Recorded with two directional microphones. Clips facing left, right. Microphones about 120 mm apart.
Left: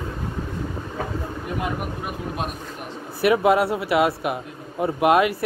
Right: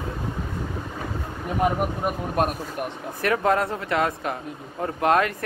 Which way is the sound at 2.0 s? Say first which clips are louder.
Right 7 dB; 50° right (ahead or behind).